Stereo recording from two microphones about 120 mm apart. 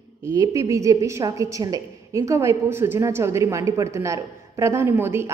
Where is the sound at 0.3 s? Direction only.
30° right (ahead or behind).